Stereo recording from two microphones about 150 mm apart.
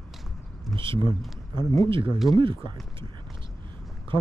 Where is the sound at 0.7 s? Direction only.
35° right (ahead or behind).